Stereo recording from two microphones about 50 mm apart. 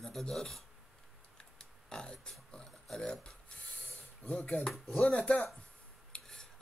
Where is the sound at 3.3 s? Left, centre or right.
Centre.